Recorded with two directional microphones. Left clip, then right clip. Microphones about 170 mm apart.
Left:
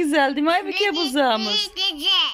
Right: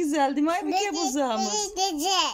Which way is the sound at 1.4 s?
60° right (ahead or behind).